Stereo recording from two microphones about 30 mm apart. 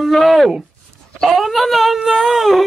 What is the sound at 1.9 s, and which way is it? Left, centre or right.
Baby cry, right.